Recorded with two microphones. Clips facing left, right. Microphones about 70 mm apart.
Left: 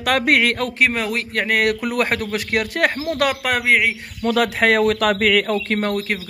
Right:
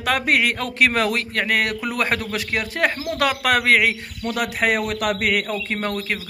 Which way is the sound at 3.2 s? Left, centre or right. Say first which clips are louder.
Right 1 dB; left.